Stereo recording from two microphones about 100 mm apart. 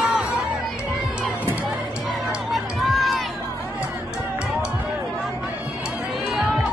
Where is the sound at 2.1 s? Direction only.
Centre (ahead or behind).